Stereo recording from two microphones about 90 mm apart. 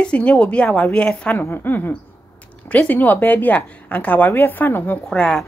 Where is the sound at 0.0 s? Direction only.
10° left (ahead or behind).